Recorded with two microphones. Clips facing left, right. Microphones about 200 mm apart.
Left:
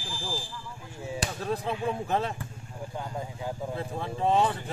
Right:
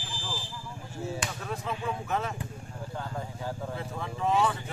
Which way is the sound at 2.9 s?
15° left (ahead or behind).